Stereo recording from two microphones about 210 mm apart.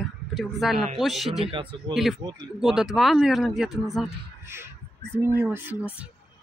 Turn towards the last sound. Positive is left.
turn(degrees=-5)  # may be behind; listen again after turning